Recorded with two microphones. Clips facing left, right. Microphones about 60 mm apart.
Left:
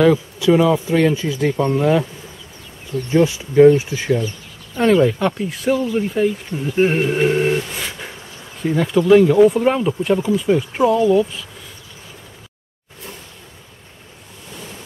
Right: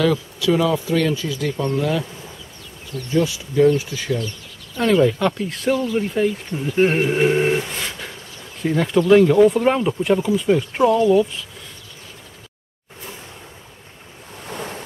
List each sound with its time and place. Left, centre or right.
0.0 s speech: left
3.1 s speech: left
4.9 s speech: centre
7.7 s a sound: centre
8.6 s speech: centre
14.5 s waves: right